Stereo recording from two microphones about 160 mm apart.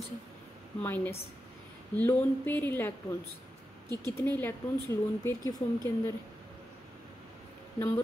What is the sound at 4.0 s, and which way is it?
A woman's voice, 15° left (ahead or behind).